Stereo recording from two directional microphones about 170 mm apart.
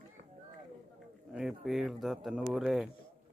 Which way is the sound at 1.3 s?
5° right (ahead or behind).